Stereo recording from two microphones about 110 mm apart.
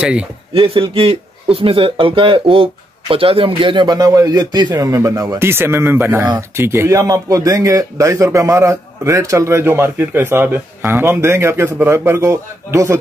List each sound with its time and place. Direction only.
0.5 s a man's voice: 55° right (ahead or behind); by 5.4 s 30° right (ahead or behind)
5.4 s a man's voice: 20° right (ahead or behind)